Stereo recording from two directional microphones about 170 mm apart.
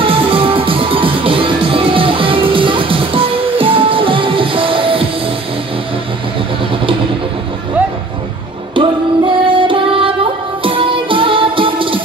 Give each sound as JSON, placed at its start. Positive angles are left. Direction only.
{"t": 0.0, "sound": "music", "side_deg": -30}
{"t": 8.7, "sound": "music", "side_deg": -30}